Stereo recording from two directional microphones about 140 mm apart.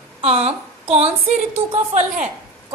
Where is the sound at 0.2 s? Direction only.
50° right (ahead or behind).